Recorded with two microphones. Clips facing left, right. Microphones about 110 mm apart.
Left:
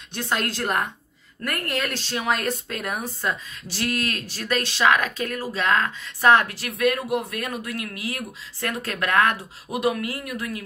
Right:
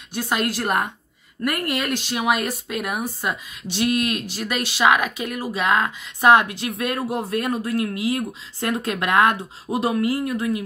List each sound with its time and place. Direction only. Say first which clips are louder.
0.1 s speech: right 3 dB; 5° right (ahead or behind); by 10.6 s 25° right (ahead or behind)